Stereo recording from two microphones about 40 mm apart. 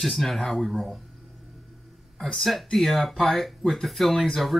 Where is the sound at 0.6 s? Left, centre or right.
Centre.